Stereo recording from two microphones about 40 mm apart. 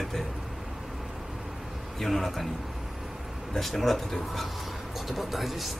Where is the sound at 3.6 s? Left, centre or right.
Centre.